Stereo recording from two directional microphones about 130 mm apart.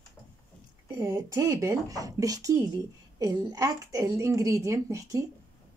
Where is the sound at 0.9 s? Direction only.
30° right (ahead or behind).